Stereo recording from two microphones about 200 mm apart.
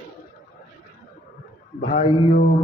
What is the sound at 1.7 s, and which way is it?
Speech, 40° left (ahead or behind).